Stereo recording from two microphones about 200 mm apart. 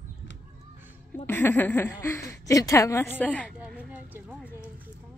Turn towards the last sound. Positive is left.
turn(degrees=-10)  # may be behind; listen again after turning